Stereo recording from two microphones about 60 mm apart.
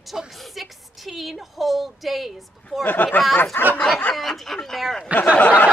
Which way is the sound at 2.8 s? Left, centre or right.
Left.